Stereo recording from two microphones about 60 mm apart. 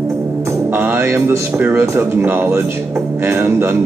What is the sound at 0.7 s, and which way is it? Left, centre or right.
A man's voice, right.